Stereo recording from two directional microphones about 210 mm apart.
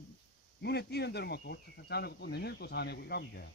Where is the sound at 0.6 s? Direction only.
50° left (ahead or behind).